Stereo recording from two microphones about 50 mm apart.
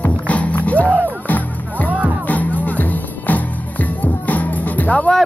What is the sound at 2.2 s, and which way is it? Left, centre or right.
Music, left.